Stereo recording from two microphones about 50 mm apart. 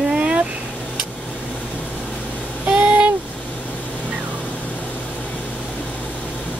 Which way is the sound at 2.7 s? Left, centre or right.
Right.